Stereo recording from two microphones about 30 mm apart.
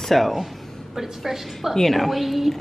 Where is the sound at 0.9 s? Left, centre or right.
Centre.